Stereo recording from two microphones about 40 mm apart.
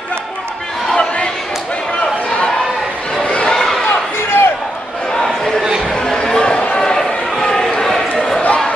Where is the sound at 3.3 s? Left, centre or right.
Left.